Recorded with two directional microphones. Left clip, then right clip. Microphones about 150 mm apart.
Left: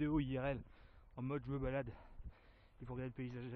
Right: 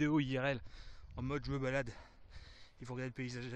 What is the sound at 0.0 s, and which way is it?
Speech, 10° right (ahead or behind).